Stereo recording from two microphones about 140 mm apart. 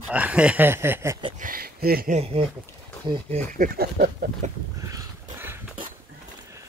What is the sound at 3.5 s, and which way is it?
Speech, 90° right.